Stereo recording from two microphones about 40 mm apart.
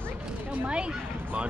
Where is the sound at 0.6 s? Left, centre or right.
Right.